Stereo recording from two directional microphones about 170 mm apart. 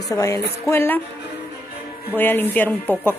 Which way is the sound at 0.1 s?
20° left (ahead or behind).